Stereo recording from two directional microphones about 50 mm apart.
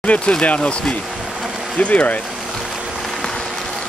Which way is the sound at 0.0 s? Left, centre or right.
Left.